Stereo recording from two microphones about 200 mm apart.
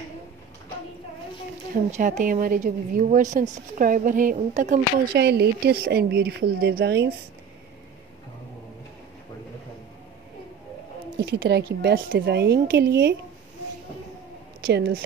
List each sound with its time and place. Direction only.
1.9 s a woman's voice: 40° right (ahead or behind)
5.1 s a woman's voice: 55° right (ahead or behind)
11.2 s a woman's voice: 60° right (ahead or behind)
14.6 s speech: 50° right (ahead or behind)